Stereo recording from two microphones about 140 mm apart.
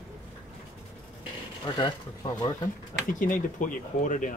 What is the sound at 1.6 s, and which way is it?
Speech, 35° left (ahead or behind).